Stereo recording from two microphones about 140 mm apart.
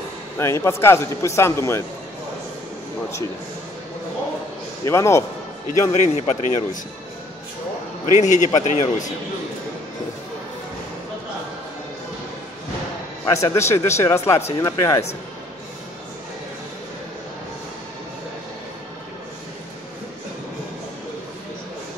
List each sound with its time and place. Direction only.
0.4 s speech: 20° left (ahead or behind)
4.8 s speech: 20° left (ahead or behind)
5.9 s a man's voice: 50° left (ahead or behind)
8.2 s a man's voice: 60° left (ahead or behind)
13.2 s speech: 20° left (ahead or behind)